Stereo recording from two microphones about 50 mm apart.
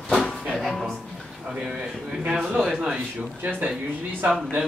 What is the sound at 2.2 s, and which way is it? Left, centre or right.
Speech, centre.